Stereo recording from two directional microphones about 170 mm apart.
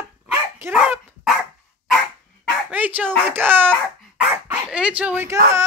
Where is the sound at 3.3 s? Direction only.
10° right (ahead or behind).